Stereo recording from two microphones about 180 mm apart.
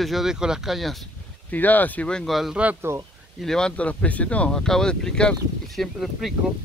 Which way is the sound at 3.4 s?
5° left (ahead or behind).